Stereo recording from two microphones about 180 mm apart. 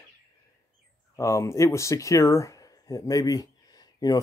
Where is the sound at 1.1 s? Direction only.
15° left (ahead or behind).